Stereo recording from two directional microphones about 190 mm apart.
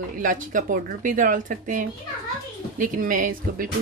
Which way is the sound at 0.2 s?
45° right (ahead or behind).